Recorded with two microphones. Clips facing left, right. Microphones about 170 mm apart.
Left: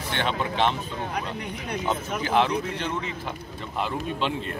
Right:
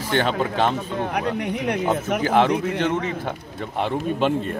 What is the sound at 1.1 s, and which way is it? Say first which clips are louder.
Speech: right 7 dB; 75° right (ahead or behind).